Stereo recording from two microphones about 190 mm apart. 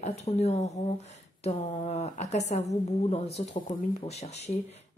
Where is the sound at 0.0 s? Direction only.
35° left (ahead or behind).